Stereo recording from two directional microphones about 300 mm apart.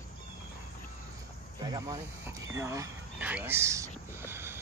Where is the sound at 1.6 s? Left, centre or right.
Centre.